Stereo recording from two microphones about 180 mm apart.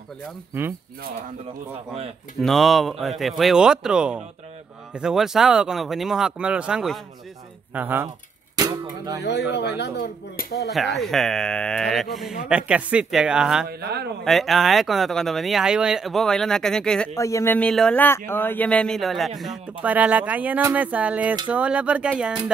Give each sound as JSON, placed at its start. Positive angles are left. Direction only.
{"t": 2.4, "sound": "speech", "side_deg": 0}
{"t": 8.5, "sound": "a sound", "side_deg": -20}
{"t": 9.2, "sound": "speech", "side_deg": 65}
{"t": 10.7, "sound": "speech", "side_deg": 0}
{"t": 13.7, "sound": "speech", "side_deg": -65}
{"t": 14.2, "sound": "speech", "side_deg": 0}
{"t": 17.1, "sound": "speech", "side_deg": 15}